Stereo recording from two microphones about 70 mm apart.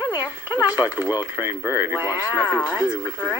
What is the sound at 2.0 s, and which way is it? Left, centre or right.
Speech, left.